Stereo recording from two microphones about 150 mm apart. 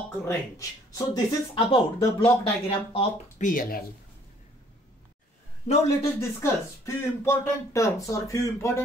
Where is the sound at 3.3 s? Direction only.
65° left (ahead or behind).